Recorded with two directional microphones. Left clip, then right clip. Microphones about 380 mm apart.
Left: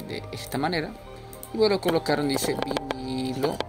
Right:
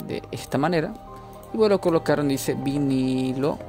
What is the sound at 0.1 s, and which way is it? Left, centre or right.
Speech, right.